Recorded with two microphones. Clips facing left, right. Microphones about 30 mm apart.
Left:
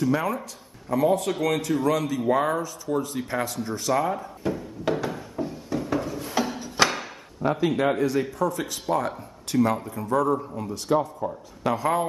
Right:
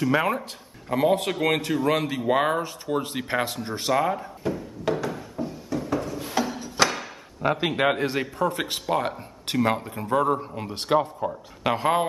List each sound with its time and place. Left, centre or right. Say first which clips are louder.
0.0 s a man's voice: right 2 dB; right
4.1 s a sound: even; centre
6.3 s music: even; centre
7.4 s a man's voice: even; right